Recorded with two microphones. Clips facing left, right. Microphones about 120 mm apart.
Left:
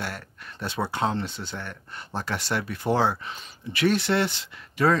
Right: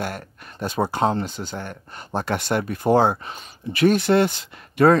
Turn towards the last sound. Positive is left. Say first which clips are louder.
# right 7 dB
turn(degrees=-50)  # may be behind; listen again after turning